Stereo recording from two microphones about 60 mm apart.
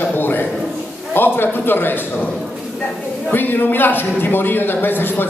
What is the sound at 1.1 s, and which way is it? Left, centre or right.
Speech, left.